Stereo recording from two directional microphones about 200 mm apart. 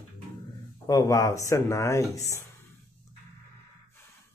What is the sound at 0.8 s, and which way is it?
Speech, 15° left (ahead or behind).